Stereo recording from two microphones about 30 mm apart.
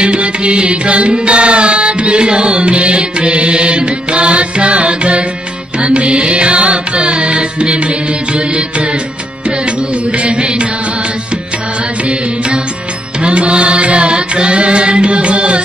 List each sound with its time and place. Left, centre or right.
0.0 s music: right
10.1 s music: right
13.2 s music: right